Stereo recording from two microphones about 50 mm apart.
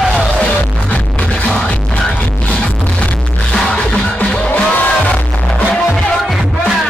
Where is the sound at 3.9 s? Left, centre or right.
Left.